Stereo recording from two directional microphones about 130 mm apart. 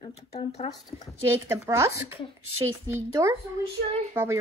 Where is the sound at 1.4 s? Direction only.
20° right (ahead or behind).